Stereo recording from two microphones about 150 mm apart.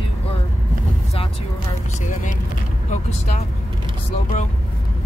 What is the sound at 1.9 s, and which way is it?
Vehicle, 55° left (ahead or behind).